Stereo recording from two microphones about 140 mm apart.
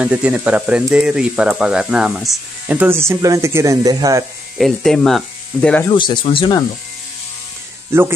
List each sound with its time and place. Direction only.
0.0 s speech: 10° right (ahead or behind); by 4.2 s 25° right (ahead or behind)
4.6 s speech: centre (ahead or behind)
5.9 s speech: 35° left (ahead or behind)
7.9 s speech: 20° right (ahead or behind)